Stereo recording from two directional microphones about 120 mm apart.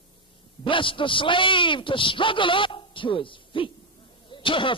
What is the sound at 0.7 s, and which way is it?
A man's voice, 45° left (ahead or behind).